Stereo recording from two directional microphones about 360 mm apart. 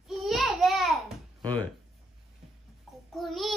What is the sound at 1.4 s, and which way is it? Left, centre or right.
Speech, centre.